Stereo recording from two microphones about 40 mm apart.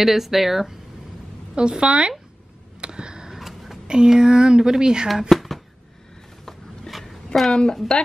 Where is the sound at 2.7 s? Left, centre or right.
Right.